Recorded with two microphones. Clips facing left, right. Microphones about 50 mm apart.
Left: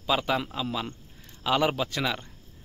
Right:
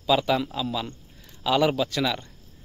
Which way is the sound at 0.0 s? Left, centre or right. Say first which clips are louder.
Right 4 dB; left.